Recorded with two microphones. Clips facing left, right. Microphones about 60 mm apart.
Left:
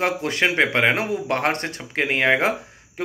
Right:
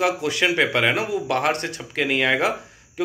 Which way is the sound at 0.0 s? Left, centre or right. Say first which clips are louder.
Even; left.